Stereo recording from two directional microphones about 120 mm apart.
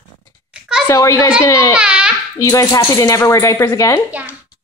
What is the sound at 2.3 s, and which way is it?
Speech, 25° left (ahead or behind).